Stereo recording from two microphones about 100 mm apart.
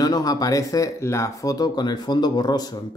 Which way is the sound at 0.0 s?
40° left (ahead or behind).